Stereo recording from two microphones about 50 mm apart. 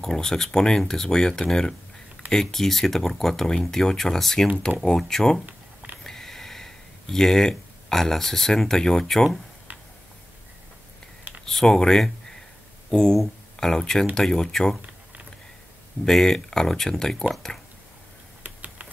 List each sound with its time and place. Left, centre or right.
0.0 s speech: centre
5.5 s a sound: right
6.0 s speech: centre
11.4 s speech: centre
16.1 s speech: centre
18.4 s typing: right